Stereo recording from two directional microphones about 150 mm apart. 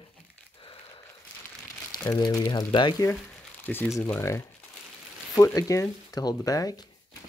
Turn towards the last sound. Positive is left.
turn(degrees=25)  # may be behind; listen again after turning